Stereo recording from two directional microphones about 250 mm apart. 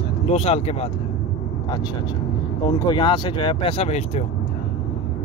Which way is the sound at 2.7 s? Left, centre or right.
Centre.